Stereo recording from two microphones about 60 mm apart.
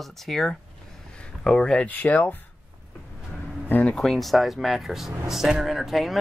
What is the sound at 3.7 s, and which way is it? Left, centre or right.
Speech, left.